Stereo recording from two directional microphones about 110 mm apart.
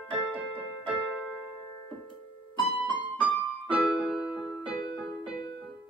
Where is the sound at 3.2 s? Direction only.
15° right (ahead or behind).